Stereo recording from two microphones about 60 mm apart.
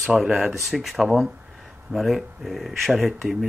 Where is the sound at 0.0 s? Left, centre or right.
Centre.